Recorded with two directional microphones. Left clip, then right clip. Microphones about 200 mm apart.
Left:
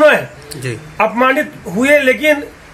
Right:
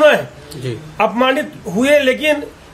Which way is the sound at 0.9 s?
25° right (ahead or behind).